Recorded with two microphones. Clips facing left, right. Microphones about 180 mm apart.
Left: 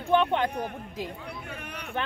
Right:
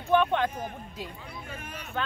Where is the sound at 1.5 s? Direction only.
65° left (ahead or behind).